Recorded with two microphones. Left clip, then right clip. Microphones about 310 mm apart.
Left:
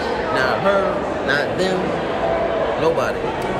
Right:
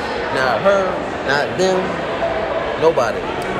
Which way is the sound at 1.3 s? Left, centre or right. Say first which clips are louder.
Right 4 dB; centre.